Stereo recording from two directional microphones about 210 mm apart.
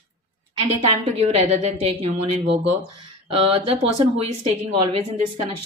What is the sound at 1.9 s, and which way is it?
Speech, 30° right (ahead or behind).